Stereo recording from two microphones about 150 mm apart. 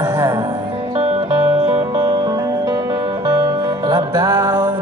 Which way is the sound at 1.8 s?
25° right (ahead or behind).